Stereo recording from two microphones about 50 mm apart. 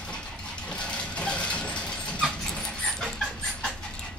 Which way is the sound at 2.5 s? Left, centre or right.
Centre.